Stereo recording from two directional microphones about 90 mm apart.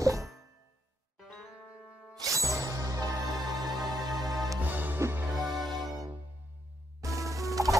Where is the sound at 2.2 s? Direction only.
35° right (ahead or behind).